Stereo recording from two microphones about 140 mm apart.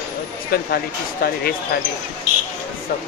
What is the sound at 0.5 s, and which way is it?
Speech, 90° left.